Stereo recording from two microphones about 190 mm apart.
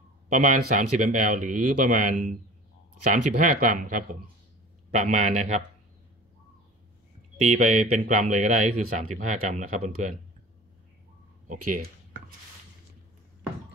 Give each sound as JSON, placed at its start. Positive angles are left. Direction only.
{"t": 0.3, "sound": "speech", "side_deg": -45}
{"t": 7.3, "sound": "speech", "side_deg": -40}
{"t": 11.4, "sound": "speech", "side_deg": -45}